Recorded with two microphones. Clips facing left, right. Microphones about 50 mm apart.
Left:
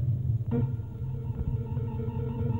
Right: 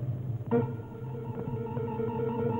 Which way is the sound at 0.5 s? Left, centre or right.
Right.